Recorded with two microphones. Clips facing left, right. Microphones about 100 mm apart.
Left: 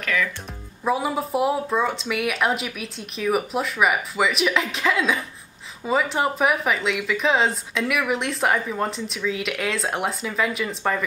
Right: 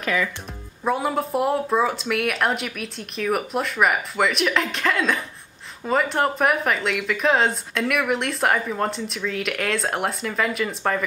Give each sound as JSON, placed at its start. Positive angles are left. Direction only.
{"t": 0.0, "sound": "speech", "side_deg": -20}
{"t": 0.8, "sound": "speech", "side_deg": 0}